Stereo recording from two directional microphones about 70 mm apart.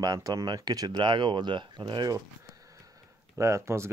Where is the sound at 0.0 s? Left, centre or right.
Right.